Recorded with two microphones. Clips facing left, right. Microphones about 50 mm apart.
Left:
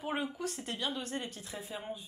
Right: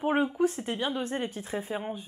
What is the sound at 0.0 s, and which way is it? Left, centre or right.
Speech, right.